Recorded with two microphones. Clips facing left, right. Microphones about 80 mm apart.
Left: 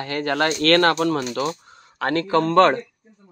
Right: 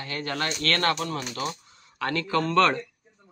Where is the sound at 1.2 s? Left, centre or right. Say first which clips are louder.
Left 7 dB; left.